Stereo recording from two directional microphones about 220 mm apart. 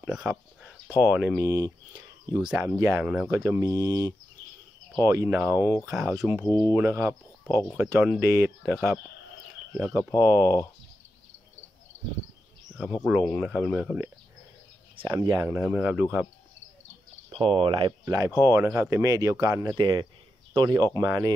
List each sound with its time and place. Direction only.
0.0 s speech: 5° right (ahead or behind)
12.7 s speech: centre (ahead or behind)
15.0 s speech: 20° right (ahead or behind)
15.5 s speech: 5° right (ahead or behind)
17.3 s speech: 25° right (ahead or behind)